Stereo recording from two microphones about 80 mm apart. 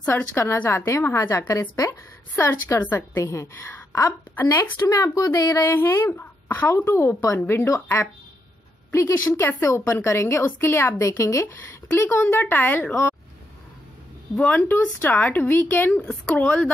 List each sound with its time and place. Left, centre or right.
0.1 s a woman's voice: left
4.7 s speech: left
5.6 s a woman's voice: left
6.7 s a woman's voice: left
9.6 s a woman's voice: left
11.4 s speech: left
14.3 s speech: left